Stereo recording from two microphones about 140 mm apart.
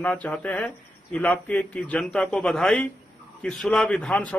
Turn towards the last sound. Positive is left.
turn(degrees=5)  # may be behind; listen again after turning